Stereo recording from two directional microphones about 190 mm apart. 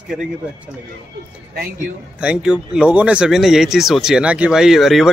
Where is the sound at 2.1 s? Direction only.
5° right (ahead or behind).